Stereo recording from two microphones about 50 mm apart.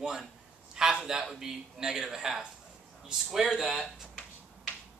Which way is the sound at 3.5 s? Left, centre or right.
Centre.